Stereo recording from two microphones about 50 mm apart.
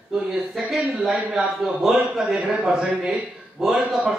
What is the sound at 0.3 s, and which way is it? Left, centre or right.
Speech, centre.